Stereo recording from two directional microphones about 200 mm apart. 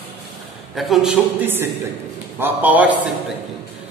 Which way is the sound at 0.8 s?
Centre (ahead or behind).